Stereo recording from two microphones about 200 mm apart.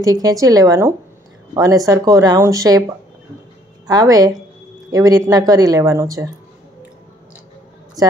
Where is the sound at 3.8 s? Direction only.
20° right (ahead or behind).